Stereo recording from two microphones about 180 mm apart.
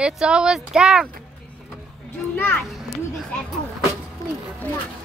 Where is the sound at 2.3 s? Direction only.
10° left (ahead or behind).